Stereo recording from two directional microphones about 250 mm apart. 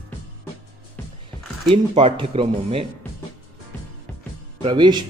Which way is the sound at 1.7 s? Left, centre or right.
Right.